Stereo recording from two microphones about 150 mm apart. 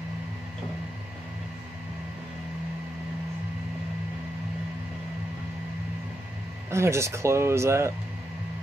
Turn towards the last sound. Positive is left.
turn(degrees=-20)  # may be behind; listen again after turning